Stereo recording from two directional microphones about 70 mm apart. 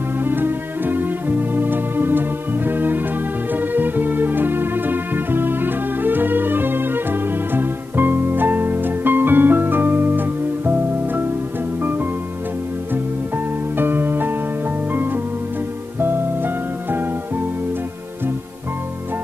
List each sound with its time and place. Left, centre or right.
0.2 s music: right
13.7 s music: right